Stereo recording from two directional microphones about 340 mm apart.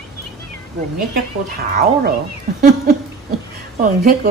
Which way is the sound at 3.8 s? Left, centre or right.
Right.